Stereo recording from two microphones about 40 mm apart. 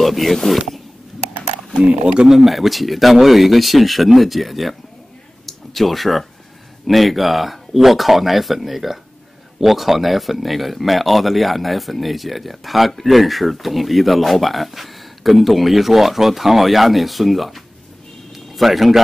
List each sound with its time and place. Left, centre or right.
0.0 s speech: centre
1.8 s speech: right
2.2 s speech: centre
18.3 s music: centre